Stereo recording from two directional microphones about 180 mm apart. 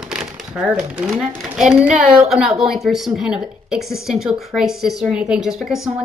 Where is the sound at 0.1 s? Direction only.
5° right (ahead or behind).